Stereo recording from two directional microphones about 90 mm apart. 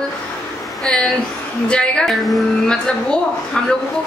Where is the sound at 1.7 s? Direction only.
10° left (ahead or behind).